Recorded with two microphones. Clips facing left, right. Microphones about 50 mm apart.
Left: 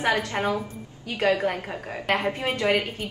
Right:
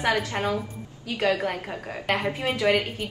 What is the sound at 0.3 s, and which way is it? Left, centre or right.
A woman's voice, centre.